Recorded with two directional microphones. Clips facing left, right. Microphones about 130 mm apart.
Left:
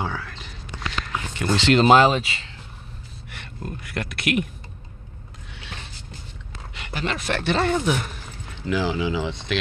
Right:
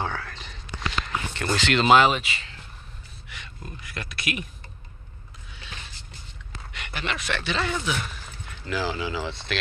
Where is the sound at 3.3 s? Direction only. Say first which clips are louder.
Left 7 dB; 60° left (ahead or behind).